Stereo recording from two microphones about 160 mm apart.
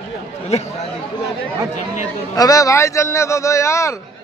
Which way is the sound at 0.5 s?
40° left (ahead or behind).